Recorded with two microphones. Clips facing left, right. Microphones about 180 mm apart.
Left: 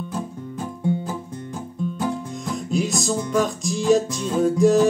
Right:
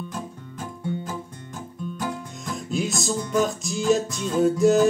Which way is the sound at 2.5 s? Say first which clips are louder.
Left 3 dB; centre (ahead or behind).